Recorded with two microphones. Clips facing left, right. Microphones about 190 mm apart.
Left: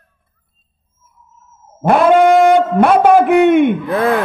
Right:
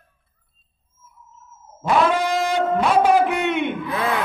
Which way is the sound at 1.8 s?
55° left (ahead or behind).